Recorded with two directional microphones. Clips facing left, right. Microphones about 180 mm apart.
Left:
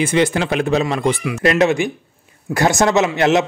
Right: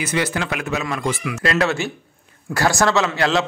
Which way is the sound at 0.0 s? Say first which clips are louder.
Left 6 dB; 25° left (ahead or behind).